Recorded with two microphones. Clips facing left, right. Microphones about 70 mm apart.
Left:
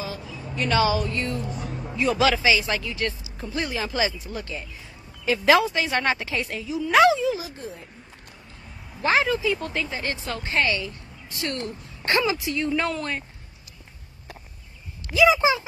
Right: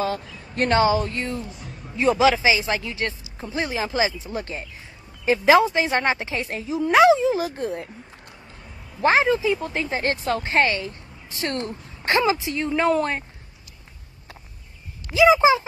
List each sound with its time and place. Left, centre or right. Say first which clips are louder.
0.0 s a sound: right 7 dB; right
0.7 s speech: right 3 dB; right
6.9 s speech: right 2 dB; right
7.3 s speech: right 9 dB; right
9.0 s speech: right 3 dB; right
9.8 s speech: right 6 dB; right
12.0 s speech: right 3 dB; right
15.1 s speech: right 3 dB; right